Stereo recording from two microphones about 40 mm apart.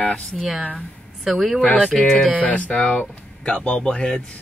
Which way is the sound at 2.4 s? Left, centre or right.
Left.